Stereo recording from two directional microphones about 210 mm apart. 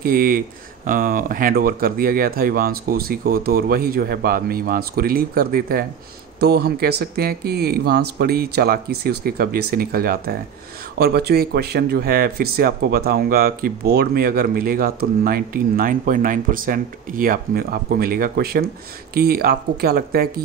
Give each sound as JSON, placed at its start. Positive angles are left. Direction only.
{"t": 0.0, "sound": "speech", "side_deg": -45}